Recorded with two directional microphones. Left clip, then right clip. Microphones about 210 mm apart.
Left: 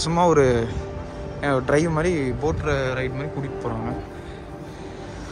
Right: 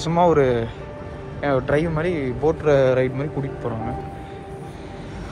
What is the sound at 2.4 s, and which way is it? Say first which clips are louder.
Speech: right 11 dB; 10° left (ahead or behind).